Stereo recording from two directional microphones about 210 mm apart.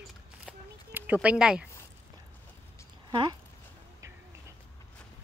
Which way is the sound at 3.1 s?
20° right (ahead or behind).